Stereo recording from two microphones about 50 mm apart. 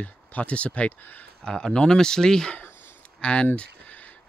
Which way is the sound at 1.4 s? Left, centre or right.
Centre.